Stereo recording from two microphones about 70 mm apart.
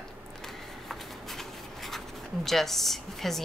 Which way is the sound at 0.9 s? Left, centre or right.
Centre.